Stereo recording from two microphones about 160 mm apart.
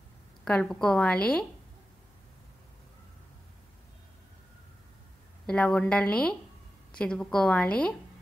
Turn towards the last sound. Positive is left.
turn(degrees=5)  # may be behind; listen again after turning